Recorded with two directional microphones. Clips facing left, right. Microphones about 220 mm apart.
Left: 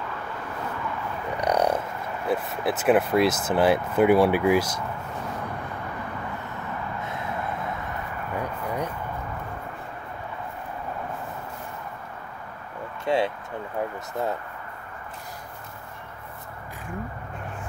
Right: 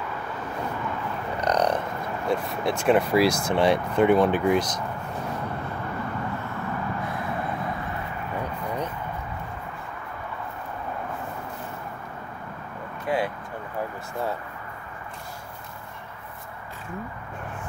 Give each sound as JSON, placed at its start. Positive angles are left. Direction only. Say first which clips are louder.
{"t": 1.3, "sound": "a sound", "louder": "left 1 dB", "side_deg": 10}
{"t": 2.2, "sound": "speech", "louder": "even", "side_deg": 5}
{"t": 13.0, "sound": "vehicle", "louder": "left 2 dB", "side_deg": 25}